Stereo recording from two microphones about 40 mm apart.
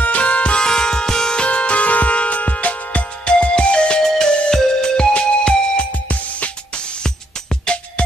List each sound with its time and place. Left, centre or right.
0.0 s music: left
0.7 s music: centre
1.4 s music: left